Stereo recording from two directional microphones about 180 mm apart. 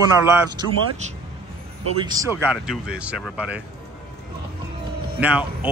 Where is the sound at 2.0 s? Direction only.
20° right (ahead or behind).